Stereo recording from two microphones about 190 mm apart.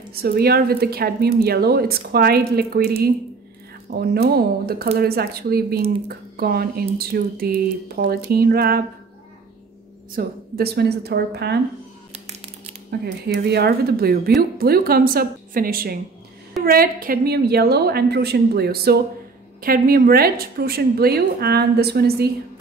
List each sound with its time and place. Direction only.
0.1 s speech: 55° right (ahead or behind)
10.1 s speech: 55° right (ahead or behind)
13.0 s a woman's voice: 60° right (ahead or behind)